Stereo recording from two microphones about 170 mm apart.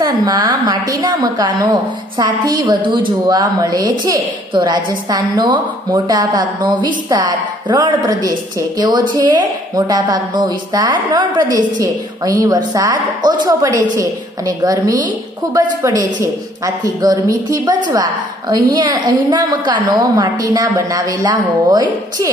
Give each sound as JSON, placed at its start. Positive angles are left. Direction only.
{"t": 0.0, "sound": "a woman's voice", "side_deg": -20}